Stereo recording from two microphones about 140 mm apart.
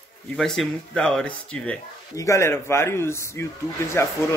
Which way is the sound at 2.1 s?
20° left (ahead or behind).